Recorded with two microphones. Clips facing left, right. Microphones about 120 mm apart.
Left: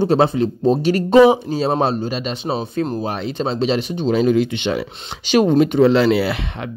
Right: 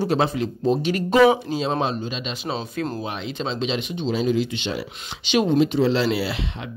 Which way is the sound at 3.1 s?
40° left (ahead or behind).